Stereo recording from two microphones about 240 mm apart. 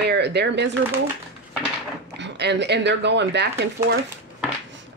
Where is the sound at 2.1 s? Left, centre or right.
Right.